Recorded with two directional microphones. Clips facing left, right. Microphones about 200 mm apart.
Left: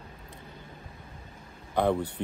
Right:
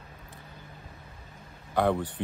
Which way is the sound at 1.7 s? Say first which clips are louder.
Even; 15° left (ahead or behind).